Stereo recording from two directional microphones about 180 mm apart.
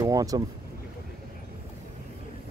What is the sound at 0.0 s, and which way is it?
Vehicle, 20° right (ahead or behind).